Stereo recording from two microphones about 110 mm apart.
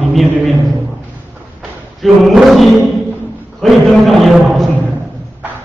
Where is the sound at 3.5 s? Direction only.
Centre (ahead or behind).